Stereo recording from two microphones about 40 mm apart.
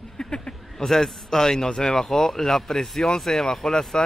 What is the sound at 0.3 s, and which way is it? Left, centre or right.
A man's voice, centre.